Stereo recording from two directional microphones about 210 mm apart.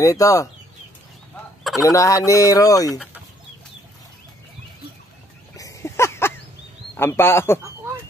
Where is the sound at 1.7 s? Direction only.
15° left (ahead or behind).